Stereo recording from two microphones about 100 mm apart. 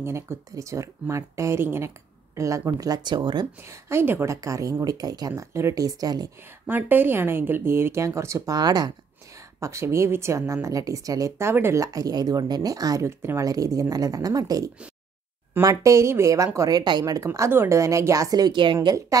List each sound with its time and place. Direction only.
0.0 s speech: 25° right (ahead or behind); by 3.4 s 45° right (ahead or behind)
3.6 s speech: 25° right (ahead or behind)
4.4 s speech: 35° right (ahead or behind)
5.3 s speech: 30° right (ahead or behind)
6.7 s speech: 20° right (ahead or behind); by 8.9 s 45° right (ahead or behind)
9.6 s speech: 30° right (ahead or behind); by 18.9 s 50° right (ahead or behind)